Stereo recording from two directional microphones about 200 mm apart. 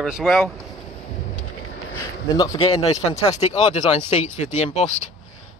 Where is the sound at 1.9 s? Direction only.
15° left (ahead or behind).